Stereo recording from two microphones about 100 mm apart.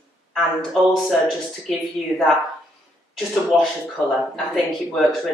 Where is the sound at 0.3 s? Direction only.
Centre (ahead or behind).